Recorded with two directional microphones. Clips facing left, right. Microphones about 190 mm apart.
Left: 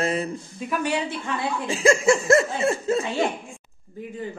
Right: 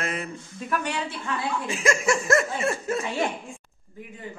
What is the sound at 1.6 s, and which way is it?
A man's voice, 30° left (ahead or behind).